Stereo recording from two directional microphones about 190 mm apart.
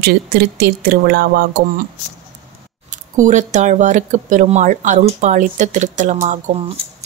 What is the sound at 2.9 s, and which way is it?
Speech, 40° right (ahead or behind).